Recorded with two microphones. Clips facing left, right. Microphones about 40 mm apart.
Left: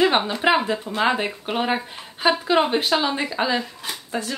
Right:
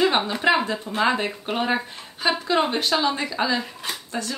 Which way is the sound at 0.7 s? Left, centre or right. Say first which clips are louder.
Left 1 dB; centre.